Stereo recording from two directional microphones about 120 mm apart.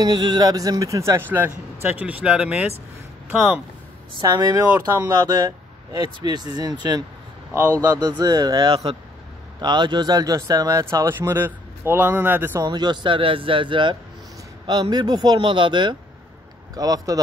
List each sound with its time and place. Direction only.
0.0 s speech: 35° right (ahead or behind); by 3.6 s 10° right (ahead or behind)
4.2 s speech: 30° right (ahead or behind)
8.2 s speech: 30° right (ahead or behind)
12.6 s speech: 35° right (ahead or behind)
16.7 s speech: 30° right (ahead or behind)